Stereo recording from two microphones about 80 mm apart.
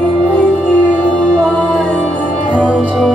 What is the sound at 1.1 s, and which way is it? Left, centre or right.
Music, centre.